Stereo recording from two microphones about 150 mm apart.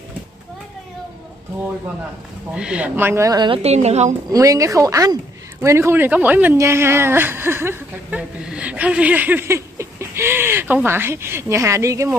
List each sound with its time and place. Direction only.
2.5 s a woman's voice: 5° right (ahead or behind); by 4.1 s 45° right (ahead or behind)
4.3 s speech: 20° right (ahead or behind)